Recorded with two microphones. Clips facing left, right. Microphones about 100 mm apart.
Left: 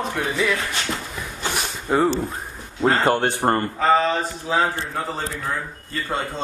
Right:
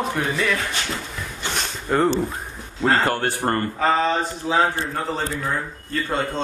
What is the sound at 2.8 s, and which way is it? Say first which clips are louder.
Speech: left 1 dB; 20° left (ahead or behind).